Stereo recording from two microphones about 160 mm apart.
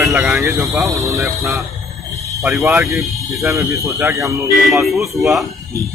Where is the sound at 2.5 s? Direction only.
15° right (ahead or behind).